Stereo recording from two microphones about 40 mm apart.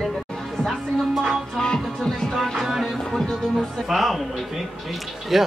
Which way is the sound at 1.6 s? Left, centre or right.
Centre.